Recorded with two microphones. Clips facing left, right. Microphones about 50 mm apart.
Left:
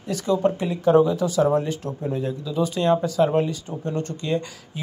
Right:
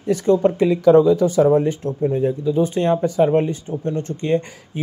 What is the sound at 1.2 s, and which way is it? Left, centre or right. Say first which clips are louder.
Speech: right 5 dB; right.